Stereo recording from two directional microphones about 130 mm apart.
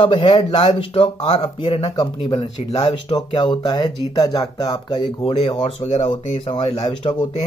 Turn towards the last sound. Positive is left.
turn(degrees=45)  # may be behind; listen again after turning